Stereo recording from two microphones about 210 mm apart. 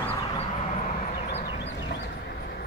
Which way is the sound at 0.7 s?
40° left (ahead or behind).